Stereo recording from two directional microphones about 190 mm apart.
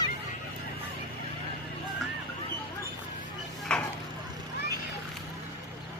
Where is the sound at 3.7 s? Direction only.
5° left (ahead or behind).